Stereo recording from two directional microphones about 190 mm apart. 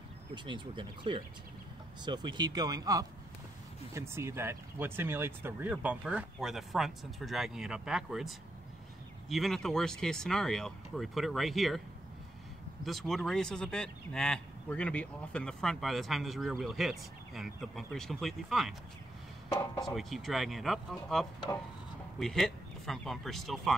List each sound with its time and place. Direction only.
0.3 s speech: 25° right (ahead or behind); by 8.3 s centre (ahead or behind)
9.3 s speech: centre (ahead or behind)
12.8 s speech: centre (ahead or behind)
19.8 s speech: centre (ahead or behind)